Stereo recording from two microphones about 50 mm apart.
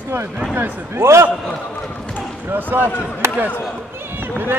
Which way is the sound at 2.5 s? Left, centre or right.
Right.